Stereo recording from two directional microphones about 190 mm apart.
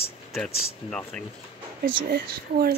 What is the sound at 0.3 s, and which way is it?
Speech, 5° left (ahead or behind).